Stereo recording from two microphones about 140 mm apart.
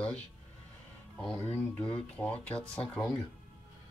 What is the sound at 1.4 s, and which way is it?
Speech, 10° left (ahead or behind).